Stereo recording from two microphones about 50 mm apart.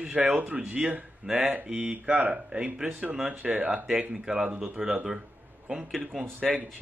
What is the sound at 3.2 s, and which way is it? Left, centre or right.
Speech, right.